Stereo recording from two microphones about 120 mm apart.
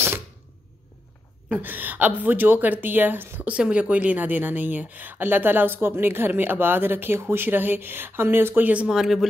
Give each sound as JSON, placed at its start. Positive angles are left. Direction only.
{"t": 1.5, "sound": "a woman's voice", "side_deg": -15}